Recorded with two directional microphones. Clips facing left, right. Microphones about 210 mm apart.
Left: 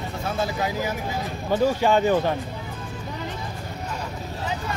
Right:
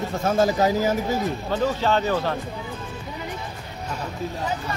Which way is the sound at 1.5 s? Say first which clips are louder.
Left 4 dB; 10° left (ahead or behind).